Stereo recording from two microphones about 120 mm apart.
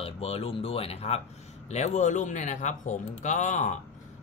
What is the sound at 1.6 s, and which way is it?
Speech, 75° left (ahead or behind).